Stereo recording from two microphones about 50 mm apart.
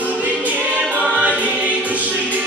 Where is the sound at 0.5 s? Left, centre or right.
Right.